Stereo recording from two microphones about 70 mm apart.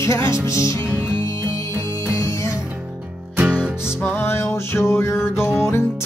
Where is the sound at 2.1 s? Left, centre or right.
Left.